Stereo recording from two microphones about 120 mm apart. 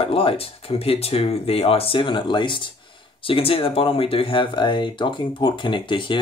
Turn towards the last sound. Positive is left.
turn(degrees=40)  # may be behind; listen again after turning